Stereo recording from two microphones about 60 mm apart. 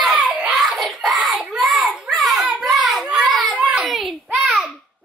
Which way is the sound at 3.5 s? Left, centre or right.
Right.